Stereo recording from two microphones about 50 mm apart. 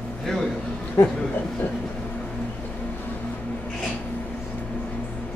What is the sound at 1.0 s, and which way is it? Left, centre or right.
Speech, left.